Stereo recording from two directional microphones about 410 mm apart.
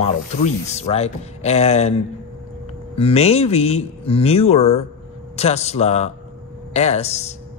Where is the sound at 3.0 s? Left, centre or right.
Centre.